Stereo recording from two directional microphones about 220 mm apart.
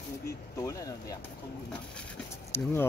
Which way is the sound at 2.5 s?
10° left (ahead or behind).